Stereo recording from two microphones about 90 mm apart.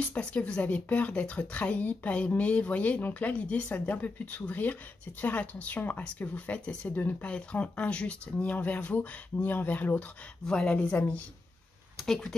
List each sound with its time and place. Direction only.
0.0 s speech: 15° left (ahead or behind)
12.0 s speech: centre (ahead or behind)